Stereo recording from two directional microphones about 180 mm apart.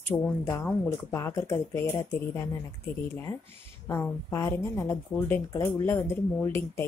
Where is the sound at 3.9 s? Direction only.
15° left (ahead or behind).